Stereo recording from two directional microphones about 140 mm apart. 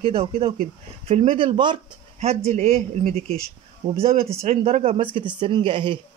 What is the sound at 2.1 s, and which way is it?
Speech, 50° right (ahead or behind).